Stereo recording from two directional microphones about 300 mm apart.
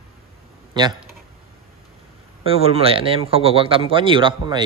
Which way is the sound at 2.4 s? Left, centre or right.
Centre.